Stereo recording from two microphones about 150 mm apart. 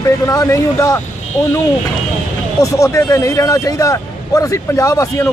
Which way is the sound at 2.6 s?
20° left (ahead or behind).